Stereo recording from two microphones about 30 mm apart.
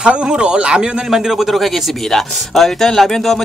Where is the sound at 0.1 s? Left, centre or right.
Right.